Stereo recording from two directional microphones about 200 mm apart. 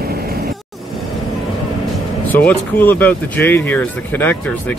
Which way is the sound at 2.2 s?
10° left (ahead or behind).